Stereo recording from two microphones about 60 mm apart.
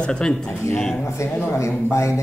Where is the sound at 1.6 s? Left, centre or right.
Left.